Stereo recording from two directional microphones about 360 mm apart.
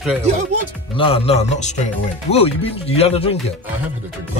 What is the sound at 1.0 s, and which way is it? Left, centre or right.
Speech, centre.